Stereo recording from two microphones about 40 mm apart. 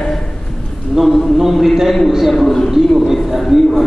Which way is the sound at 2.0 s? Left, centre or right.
Centre.